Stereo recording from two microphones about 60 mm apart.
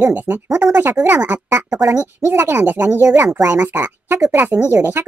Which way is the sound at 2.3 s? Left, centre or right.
Right.